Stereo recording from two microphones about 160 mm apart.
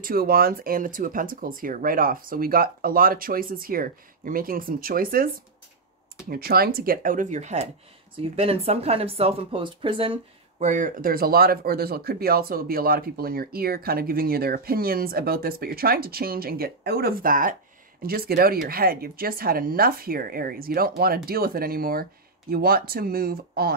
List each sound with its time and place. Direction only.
0.0 s speech: 70° right (ahead or behind)
6.3 s speech: 70° right (ahead or behind); by 10.1 s 35° right (ahead or behind)
10.6 s speech: 50° right (ahead or behind)
18.0 s speech: 70° right (ahead or behind)